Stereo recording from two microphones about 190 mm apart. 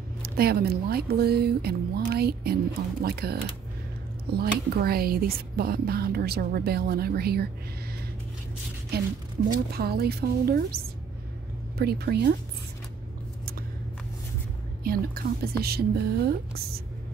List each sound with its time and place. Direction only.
0.2 s speech: 55° right (ahead or behind)
9.7 s speech: 55° right (ahead or behind)
11.8 s speech: 55° right (ahead or behind)
14.8 s a woman's voice: 50° right (ahead or behind)